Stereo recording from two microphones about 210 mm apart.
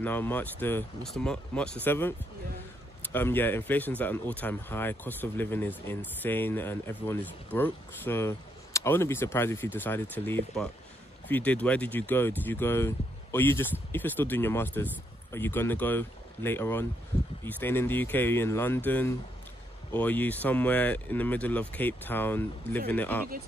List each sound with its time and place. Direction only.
0.0 s speech: 10° left (ahead or behind)